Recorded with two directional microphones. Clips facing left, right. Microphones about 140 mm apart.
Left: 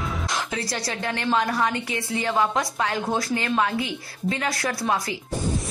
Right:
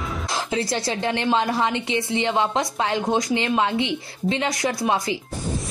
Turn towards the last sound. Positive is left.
turn(degrees=-25)  # may be behind; listen again after turning